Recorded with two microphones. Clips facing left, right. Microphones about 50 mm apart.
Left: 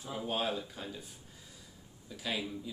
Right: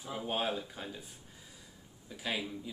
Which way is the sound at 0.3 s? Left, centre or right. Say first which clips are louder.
Even; centre.